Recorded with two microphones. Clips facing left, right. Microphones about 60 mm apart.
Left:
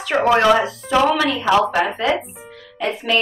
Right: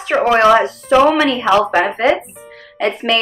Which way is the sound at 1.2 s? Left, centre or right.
Right.